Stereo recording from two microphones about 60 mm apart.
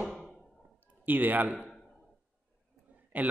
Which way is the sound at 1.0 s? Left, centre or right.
Right.